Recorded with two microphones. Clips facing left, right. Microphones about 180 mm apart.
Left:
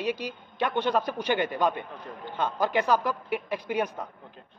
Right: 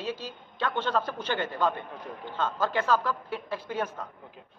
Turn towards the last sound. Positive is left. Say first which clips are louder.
# left 3 dB
turn(degrees=15)  # may be behind; listen again after turning